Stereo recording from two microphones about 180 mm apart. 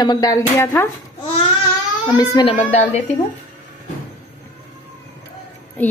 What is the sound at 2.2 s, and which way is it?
Speech, 20° left (ahead or behind).